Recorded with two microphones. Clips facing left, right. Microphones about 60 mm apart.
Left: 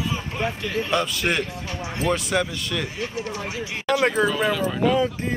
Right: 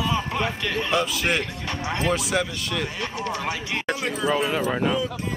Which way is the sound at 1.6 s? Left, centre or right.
Right.